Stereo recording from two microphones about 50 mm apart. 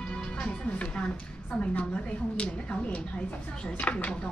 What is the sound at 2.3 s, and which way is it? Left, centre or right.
Speech, left.